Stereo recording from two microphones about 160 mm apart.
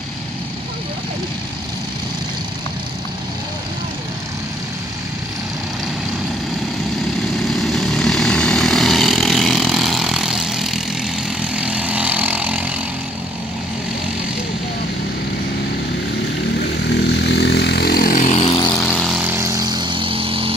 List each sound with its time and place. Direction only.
7.5 s vehicle: centre (ahead or behind)
16.9 s vehicle: 90° left; by 18.3 s 60° left (ahead or behind)
18.9 s vehicle: 5° left (ahead or behind)
19.1 s vehicle: 15° right (ahead or behind); by 20.5 s 35° right (ahead or behind)